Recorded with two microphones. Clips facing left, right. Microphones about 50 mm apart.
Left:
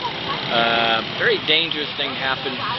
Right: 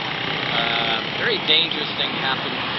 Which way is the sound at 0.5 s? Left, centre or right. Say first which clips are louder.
Left 6 dB; left.